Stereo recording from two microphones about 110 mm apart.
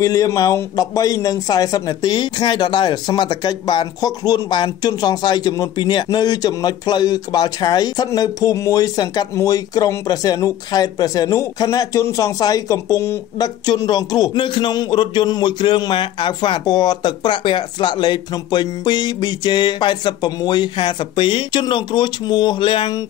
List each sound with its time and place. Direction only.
0.0 s a man's voice: 35° left (ahead or behind)
13.7 s a man's voice: 40° left (ahead or behind)